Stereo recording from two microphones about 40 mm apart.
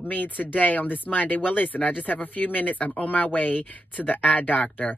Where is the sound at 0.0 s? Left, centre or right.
Left.